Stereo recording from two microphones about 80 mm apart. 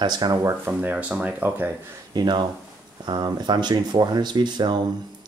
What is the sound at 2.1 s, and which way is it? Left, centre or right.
Speech, right.